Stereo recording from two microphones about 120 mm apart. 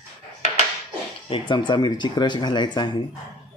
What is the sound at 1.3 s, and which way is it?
Speech, 40° left (ahead or behind).